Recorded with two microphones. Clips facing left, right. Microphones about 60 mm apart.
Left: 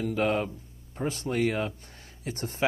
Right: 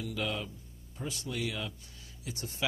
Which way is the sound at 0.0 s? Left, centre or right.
Left.